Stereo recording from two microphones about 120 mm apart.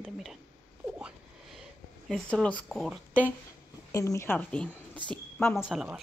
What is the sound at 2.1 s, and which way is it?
Speech, 5° left (ahead or behind).